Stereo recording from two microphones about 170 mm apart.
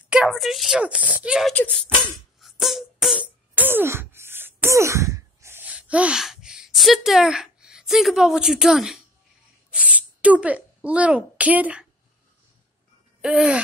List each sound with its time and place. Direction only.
0.1 s speech: 5° right (ahead or behind)
1.5 s speech: 10° left (ahead or behind)
2.4 s music: centre (ahead or behind)
9.7 s speech: 10° right (ahead or behind)
13.2 s a sound: 10° right (ahead or behind)